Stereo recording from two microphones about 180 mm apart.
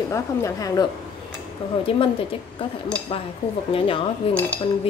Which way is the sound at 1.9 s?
30° left (ahead or behind).